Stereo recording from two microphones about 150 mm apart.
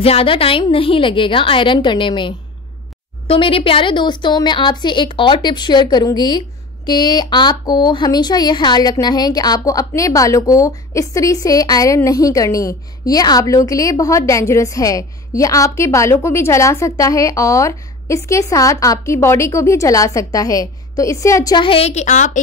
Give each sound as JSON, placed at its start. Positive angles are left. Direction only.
{"t": 0.0, "sound": "a woman's voice", "side_deg": 40}
{"t": 21.5, "sound": "a woman's voice", "side_deg": 40}